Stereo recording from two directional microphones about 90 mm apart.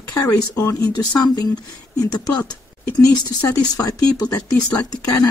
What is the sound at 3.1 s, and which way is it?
Speech, 45° left (ahead or behind).